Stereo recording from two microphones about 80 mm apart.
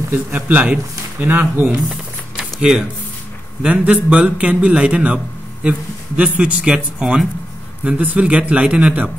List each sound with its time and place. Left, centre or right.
0.1 s a man's voice: right
1.9 s a sound: centre
3.6 s a man's voice: centre